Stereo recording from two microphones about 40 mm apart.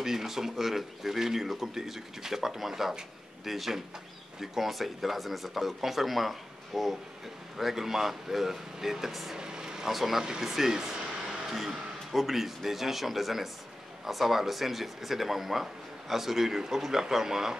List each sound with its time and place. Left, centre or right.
0.0 s speech: centre
9.4 s vehicle: centre
9.9 s speech: centre